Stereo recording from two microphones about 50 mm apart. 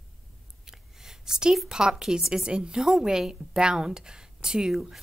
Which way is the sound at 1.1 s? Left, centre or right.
Centre.